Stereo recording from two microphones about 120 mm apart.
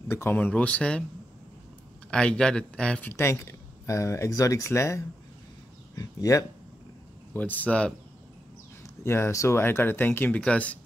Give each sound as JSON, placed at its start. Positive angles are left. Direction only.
{"t": 0.1, "sound": "speech", "side_deg": 20}
{"t": 2.0, "sound": "speech", "side_deg": 5}
{"t": 3.1, "sound": "speech", "side_deg": 20}
{"t": 7.3, "sound": "speech", "side_deg": 15}
{"t": 8.8, "sound": "speech", "side_deg": 20}